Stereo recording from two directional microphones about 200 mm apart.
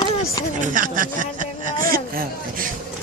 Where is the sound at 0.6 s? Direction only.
40° right (ahead or behind).